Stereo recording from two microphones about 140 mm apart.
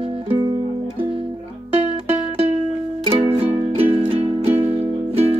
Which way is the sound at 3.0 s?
40° right (ahead or behind).